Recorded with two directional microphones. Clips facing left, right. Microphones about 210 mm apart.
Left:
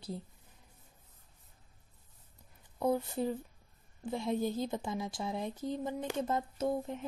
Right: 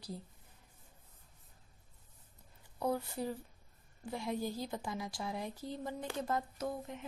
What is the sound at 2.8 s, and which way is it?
Speech, 20° left (ahead or behind).